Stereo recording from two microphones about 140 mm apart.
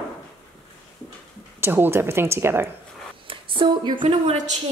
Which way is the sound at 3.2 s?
40° right (ahead or behind).